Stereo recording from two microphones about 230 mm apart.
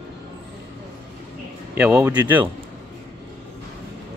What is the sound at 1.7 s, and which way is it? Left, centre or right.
Speech, centre.